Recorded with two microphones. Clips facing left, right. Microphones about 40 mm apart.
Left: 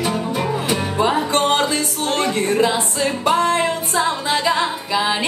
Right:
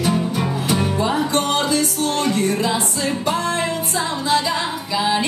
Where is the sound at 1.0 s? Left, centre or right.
Left.